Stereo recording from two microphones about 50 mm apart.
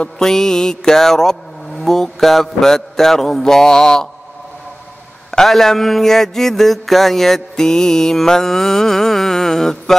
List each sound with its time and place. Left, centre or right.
0.2 s speech: centre
1.8 s mantra: centre
5.3 s mantra: centre